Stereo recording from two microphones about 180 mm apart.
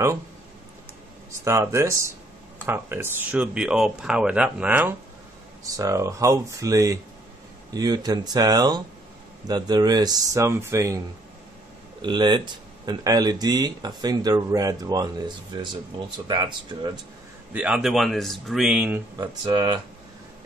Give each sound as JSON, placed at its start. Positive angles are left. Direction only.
{"t": 1.4, "sound": "speech", "side_deg": -15}
{"t": 12.0, "sound": "speech", "side_deg": -25}
{"t": 17.5, "sound": "speech", "side_deg": -5}
{"t": 19.1, "sound": "speech", "side_deg": -25}